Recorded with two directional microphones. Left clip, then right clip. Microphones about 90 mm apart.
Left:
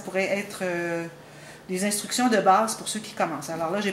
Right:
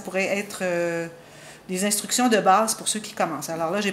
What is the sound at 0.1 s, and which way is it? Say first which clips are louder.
A woman's voice: right 1 dB; 30° right (ahead or behind).